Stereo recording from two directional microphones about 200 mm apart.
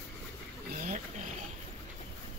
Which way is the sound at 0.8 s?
40° right (ahead or behind).